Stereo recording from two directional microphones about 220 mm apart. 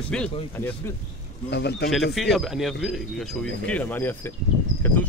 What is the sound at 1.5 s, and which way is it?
Speech, 50° left (ahead or behind).